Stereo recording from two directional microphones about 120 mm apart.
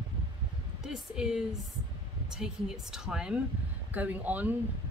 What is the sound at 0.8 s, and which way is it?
Speech, 5° right (ahead or behind).